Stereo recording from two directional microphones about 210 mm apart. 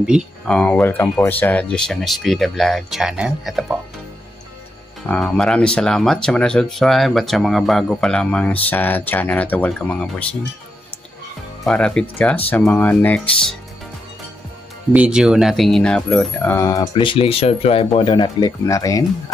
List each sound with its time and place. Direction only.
0.0 s speech: centre (ahead or behind)
5.0 s speech: 5° left (ahead or behind)
11.6 s speech: 5° left (ahead or behind)
14.9 s speech: 5° right (ahead or behind); by 19.0 s 15° left (ahead or behind)